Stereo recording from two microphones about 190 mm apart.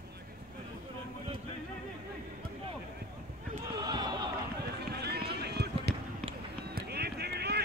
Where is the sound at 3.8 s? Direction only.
20° right (ahead or behind).